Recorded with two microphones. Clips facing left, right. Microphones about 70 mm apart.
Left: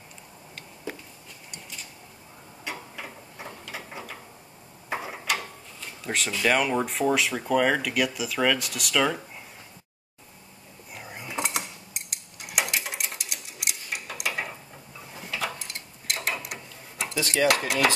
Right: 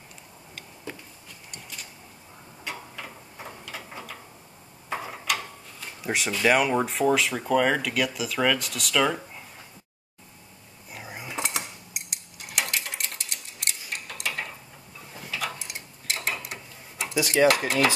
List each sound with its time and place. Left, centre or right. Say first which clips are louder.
2.6 s tick-tock: even; centre
4.8 s a sound: even; centre
6.0 s speech: right 2 dB; centre
10.9 s cutlery: right 1 dB; centre
15.7 s tick-tock: right 1 dB; centre
16.1 s mechanisms: even; centre
17.5 s speech: right 2 dB; centre